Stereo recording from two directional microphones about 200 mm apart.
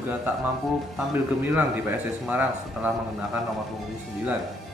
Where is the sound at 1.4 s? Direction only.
10° right (ahead or behind).